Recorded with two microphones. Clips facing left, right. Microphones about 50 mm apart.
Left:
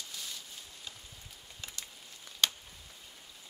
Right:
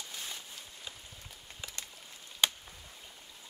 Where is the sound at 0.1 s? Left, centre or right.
Right.